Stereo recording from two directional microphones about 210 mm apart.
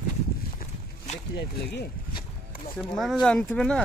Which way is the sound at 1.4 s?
50° left (ahead or behind).